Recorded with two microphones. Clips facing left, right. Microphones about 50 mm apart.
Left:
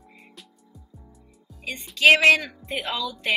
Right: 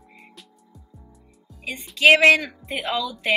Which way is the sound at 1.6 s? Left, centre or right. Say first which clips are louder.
Right 1 dB; centre.